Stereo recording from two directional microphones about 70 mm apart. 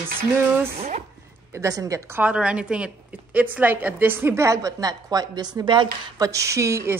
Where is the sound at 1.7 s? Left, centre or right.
Right.